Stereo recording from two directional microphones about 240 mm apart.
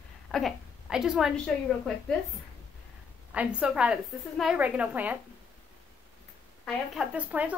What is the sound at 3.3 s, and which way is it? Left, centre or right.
A woman's voice, centre.